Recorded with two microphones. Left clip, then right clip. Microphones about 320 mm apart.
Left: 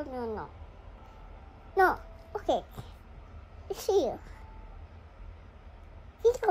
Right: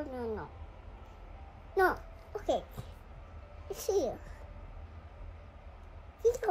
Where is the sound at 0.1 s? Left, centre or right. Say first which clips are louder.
Left 2 dB; centre.